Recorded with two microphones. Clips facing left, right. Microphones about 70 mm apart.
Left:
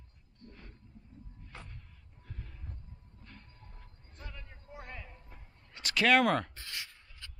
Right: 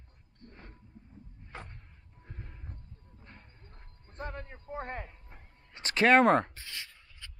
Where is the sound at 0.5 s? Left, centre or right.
Right.